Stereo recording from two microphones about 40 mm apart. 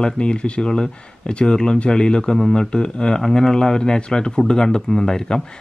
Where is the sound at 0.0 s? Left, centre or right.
Left.